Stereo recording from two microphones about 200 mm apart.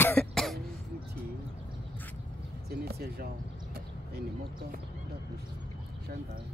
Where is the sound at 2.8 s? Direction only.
50° right (ahead or behind).